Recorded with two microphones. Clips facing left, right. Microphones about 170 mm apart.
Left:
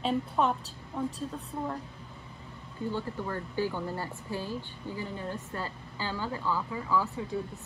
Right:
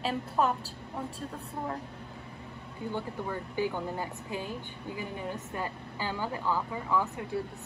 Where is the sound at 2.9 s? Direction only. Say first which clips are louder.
Even; 15° right (ahead or behind).